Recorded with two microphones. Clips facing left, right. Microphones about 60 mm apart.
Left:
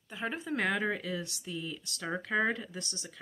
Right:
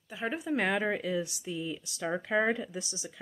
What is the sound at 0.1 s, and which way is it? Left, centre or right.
Speech, centre.